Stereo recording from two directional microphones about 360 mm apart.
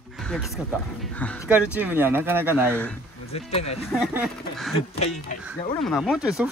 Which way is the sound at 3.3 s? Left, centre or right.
Centre.